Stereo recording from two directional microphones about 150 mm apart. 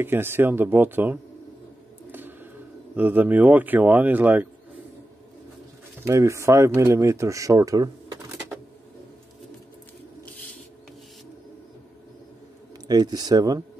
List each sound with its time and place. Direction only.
0.0 s speech: 15° right (ahead or behind)
3.0 s speech: 10° right (ahead or behind)
6.0 s speech: 20° right (ahead or behind)
12.8 s speech: 25° right (ahead or behind)